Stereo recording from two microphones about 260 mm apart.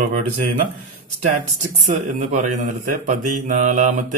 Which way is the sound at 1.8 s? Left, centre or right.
Right.